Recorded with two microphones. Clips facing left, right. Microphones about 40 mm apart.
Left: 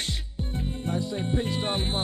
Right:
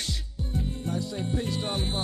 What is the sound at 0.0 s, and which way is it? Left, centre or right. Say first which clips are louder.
Music: left 2 dB; left.